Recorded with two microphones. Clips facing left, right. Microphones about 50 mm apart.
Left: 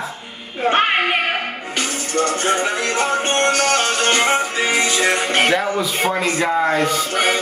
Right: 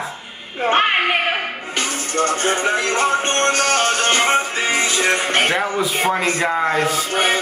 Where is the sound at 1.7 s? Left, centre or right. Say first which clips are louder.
Left 1 dB; right.